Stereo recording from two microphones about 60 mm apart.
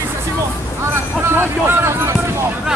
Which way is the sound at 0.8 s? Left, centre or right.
Right.